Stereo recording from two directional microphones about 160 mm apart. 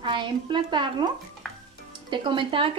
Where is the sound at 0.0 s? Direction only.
30° right (ahead or behind).